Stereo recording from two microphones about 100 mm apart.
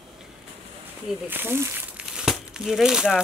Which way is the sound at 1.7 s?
10° right (ahead or behind).